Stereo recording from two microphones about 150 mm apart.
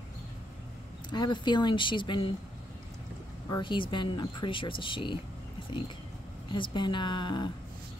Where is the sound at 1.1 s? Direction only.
30° left (ahead or behind).